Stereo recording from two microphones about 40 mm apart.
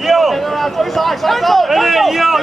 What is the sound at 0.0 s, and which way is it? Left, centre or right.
Speech, centre.